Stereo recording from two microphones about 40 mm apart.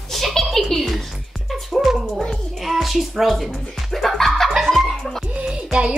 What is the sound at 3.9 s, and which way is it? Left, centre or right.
Music, centre.